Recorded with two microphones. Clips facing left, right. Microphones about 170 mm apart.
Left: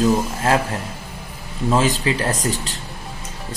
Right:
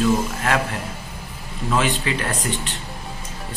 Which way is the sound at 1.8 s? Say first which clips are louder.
Left 1 dB; 35° left (ahead or behind).